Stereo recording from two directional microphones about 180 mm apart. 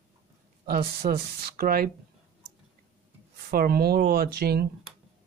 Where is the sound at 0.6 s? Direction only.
60° right (ahead or behind).